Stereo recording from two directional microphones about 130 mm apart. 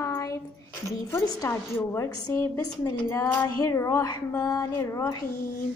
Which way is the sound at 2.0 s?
30° left (ahead or behind).